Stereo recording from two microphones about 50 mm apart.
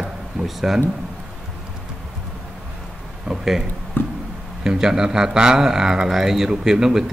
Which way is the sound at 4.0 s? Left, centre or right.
Left.